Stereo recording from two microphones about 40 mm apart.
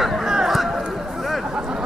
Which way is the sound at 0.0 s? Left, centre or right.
Centre.